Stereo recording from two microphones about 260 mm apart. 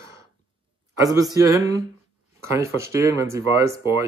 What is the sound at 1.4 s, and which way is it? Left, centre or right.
Speech, centre.